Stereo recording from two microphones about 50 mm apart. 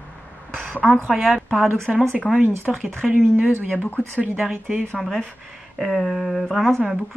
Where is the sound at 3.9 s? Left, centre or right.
Right.